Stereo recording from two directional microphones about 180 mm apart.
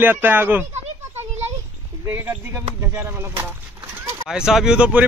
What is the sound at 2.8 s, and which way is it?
Speech, 10° right (ahead or behind).